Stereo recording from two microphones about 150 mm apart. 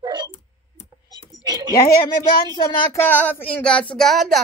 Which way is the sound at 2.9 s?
15° left (ahead or behind).